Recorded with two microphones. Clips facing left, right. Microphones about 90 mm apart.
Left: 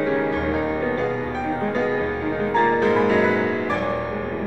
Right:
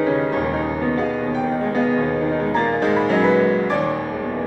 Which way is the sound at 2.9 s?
20° right (ahead or behind).